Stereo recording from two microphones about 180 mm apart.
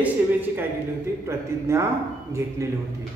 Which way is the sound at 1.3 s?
15° right (ahead or behind).